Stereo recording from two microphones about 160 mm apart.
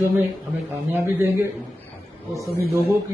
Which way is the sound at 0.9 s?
15° right (ahead or behind).